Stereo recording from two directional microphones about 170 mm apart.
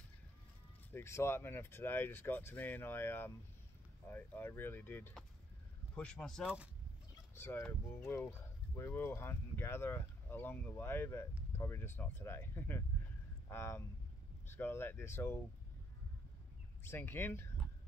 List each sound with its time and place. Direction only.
0.9 s speech: 15° left (ahead or behind); by 6.7 s 5° right (ahead or behind)
7.3 s speech: 15° left (ahead or behind)
16.8 s speech: 15° left (ahead or behind)